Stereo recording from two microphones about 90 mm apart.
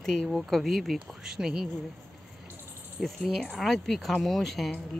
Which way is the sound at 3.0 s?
5° left (ahead or behind).